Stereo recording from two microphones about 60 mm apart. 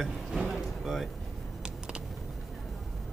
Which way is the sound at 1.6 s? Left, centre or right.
Centre.